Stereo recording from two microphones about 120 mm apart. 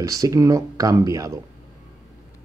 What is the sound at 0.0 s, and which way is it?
Speech, 30° right (ahead or behind).